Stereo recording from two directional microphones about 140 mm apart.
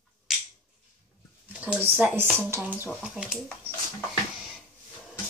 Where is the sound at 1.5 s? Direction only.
10° right (ahead or behind).